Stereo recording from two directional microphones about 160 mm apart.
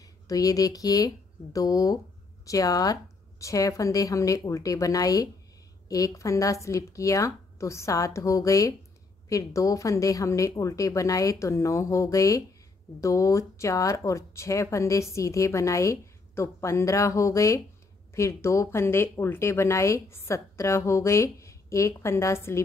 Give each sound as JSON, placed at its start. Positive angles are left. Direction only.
{"t": 0.0, "sound": "speech", "side_deg": 20}